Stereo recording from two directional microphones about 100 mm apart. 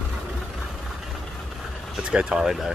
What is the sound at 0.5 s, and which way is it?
Vehicle, 5° right (ahead or behind).